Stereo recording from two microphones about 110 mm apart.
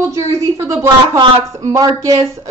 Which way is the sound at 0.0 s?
25° right (ahead or behind).